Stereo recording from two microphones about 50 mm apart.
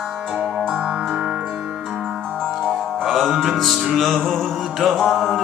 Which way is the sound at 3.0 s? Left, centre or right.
Centre.